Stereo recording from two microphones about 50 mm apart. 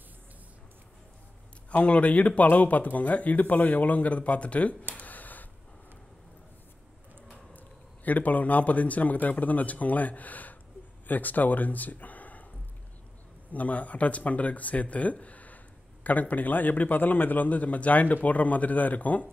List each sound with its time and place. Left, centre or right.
1.7 s speech: left
4.9 s a sound: left
7.5 s a man's voice: left
13.5 s speech: left